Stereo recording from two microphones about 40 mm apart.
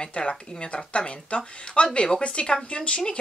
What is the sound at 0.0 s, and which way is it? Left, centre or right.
Speech, left.